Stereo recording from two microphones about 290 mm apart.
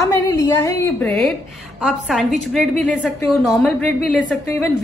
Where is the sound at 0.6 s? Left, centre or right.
Centre.